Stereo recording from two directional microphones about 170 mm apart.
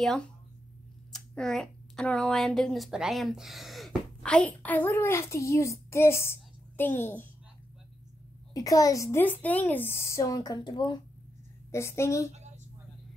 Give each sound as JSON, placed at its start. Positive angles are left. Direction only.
{"t": 0.0, "sound": "speech", "side_deg": 5}
{"t": 8.5, "sound": "a woman's voice", "side_deg": 20}
{"t": 12.3, "sound": "a sound", "side_deg": -40}